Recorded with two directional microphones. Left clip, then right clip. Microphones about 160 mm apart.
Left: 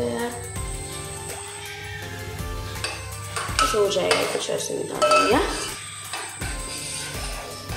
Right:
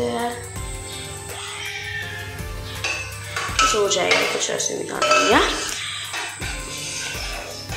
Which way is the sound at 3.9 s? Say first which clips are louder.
Right 3 dB; 20° left (ahead or behind).